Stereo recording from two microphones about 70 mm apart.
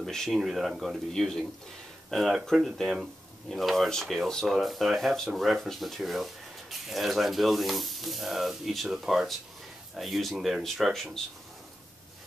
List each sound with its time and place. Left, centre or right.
0.0 s speech: centre